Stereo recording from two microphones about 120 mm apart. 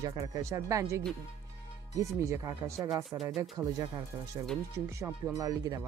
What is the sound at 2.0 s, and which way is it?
Speech, 25° right (ahead or behind).